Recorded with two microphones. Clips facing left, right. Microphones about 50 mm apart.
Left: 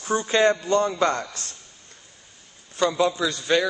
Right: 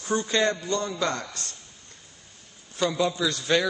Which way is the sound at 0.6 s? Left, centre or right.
Left.